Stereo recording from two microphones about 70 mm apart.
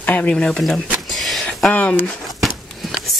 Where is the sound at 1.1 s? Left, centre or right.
Centre.